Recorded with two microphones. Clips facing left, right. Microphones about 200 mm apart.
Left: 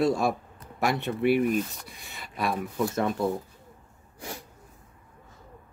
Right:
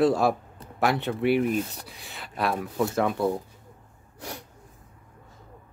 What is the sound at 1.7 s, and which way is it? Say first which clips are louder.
Speech: right 2 dB; 65° right (ahead or behind).